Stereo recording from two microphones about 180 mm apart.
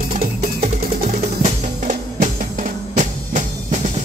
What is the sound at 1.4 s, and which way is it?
Music, 45° right (ahead or behind).